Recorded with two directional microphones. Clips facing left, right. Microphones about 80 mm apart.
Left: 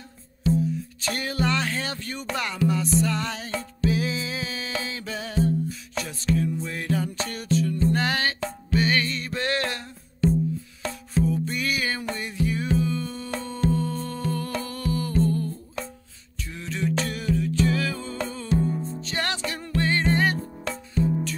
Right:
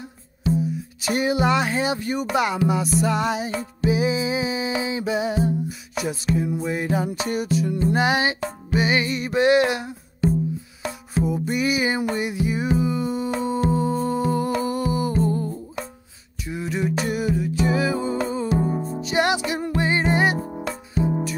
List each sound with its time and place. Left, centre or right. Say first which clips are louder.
1.0 s speech: right 6 dB; centre
11.1 s music: right 2 dB; centre